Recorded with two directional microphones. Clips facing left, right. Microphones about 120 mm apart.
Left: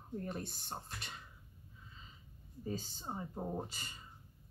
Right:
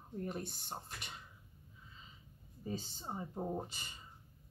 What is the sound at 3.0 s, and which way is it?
Speech, centre (ahead or behind).